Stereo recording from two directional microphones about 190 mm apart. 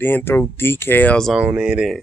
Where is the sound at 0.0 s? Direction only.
10° left (ahead or behind).